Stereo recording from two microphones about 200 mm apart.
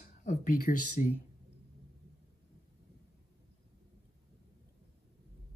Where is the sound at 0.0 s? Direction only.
40° left (ahead or behind).